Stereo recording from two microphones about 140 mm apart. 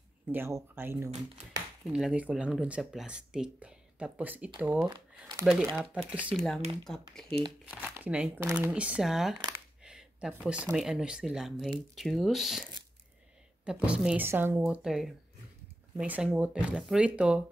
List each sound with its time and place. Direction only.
0.3 s speech: 20° right (ahead or behind)
1.9 s speech: 5° right (ahead or behind)
7.2 s speech: 40° right (ahead or behind)
7.7 s speech: 10° right (ahead or behind)
13.7 s speech: 5° right (ahead or behind)
14.7 s speech: 5° right (ahead or behind)